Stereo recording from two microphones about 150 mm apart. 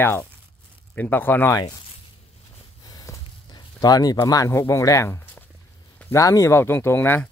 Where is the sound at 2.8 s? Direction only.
25° left (ahead or behind).